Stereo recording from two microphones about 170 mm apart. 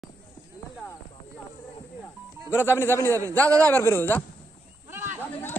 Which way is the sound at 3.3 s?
20° right (ahead or behind).